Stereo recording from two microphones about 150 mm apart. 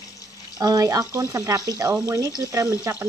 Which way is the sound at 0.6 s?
25° right (ahead or behind).